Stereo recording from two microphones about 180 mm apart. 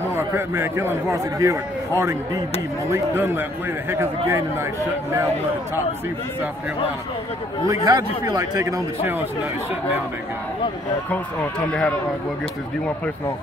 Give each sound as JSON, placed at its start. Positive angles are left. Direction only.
{"t": 0.1, "sound": "a man's voice", "side_deg": -15}
{"t": 7.6, "sound": "a man's voice", "side_deg": -20}
{"t": 11.7, "sound": "speech", "side_deg": 5}